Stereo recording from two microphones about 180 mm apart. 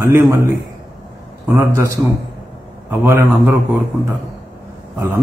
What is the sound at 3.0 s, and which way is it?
Speech, 10° right (ahead or behind).